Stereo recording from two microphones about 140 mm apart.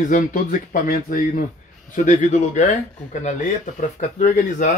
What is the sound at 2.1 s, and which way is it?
Speech, 60° left (ahead or behind).